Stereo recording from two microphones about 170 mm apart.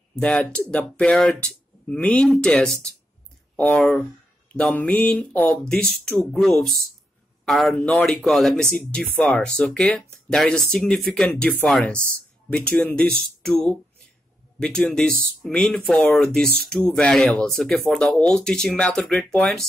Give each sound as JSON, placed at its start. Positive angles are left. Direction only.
{"t": 0.1, "sound": "speech", "side_deg": 5}